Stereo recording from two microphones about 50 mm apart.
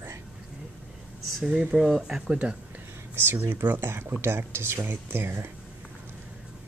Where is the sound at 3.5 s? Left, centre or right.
Right.